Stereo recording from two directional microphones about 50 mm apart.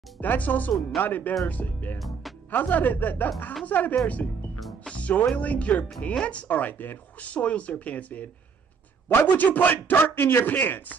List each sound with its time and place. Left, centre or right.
0.2 s speech: left
2.0 s music: centre
2.5 s speech: left
9.1 s a man's voice: left